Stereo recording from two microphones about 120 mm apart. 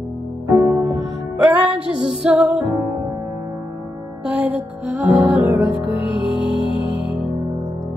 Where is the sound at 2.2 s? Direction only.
10° right (ahead or behind).